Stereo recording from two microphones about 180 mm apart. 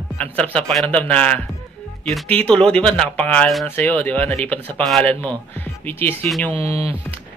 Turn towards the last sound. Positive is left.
turn(degrees=-35)  # may be behind; listen again after turning